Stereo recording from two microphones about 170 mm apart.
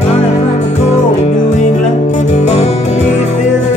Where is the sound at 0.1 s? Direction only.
40° left (ahead or behind).